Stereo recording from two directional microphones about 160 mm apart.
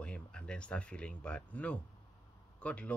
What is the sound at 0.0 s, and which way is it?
Speech, 5° left (ahead or behind).